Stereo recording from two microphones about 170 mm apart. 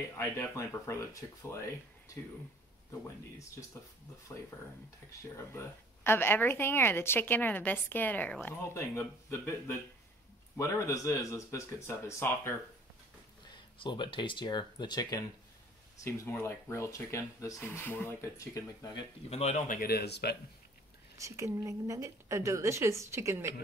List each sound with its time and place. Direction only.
0.2 s a woman's voice: 15° left (ahead or behind)
6.0 s a woman's voice: 10° left (ahead or behind)
10.6 s a woman's voice: 15° left (ahead or behind)
13.5 s a woman's voice: 25° left (ahead or behind)
19.3 s speech: 40° left (ahead or behind)
19.8 s speech: 65° left (ahead or behind)
21.2 s a woman's voice: 15° right (ahead or behind)